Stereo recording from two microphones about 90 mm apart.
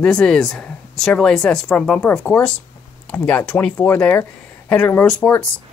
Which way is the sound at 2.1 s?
20° left (ahead or behind).